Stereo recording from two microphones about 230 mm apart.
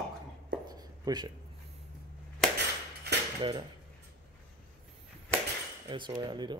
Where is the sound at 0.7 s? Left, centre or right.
Centre.